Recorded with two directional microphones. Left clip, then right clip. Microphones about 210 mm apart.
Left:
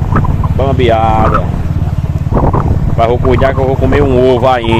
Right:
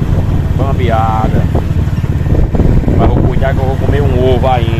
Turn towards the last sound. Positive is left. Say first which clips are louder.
# left 3 dB
turn(degrees=50)  # may be behind; listen again after turning